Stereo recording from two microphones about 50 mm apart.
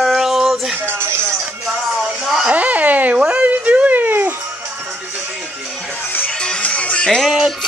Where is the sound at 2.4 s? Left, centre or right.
Right.